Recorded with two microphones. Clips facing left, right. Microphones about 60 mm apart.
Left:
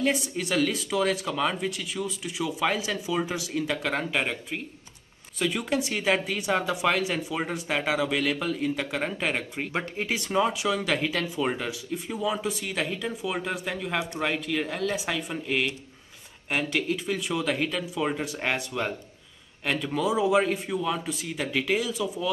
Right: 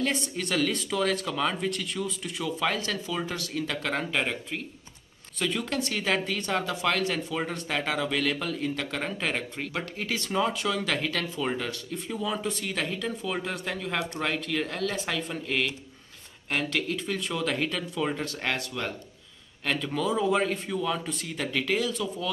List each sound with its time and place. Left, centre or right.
0.0 s speech: centre
9.7 s speech: left
19.6 s speech: centre